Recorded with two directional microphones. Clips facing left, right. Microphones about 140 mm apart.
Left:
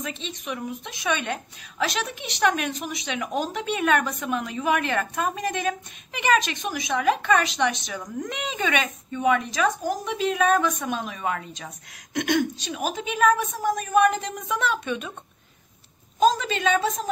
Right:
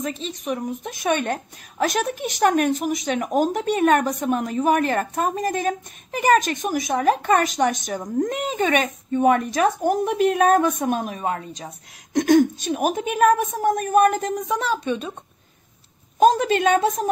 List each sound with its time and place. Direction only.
0.0 s a woman's voice: 35° right (ahead or behind)
11.3 s a woman's voice: 30° right (ahead or behind)
16.2 s a woman's voice: 55° right (ahead or behind)